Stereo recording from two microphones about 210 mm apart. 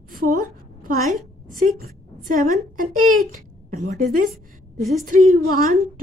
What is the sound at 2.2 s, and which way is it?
Speech, 40° right (ahead or behind).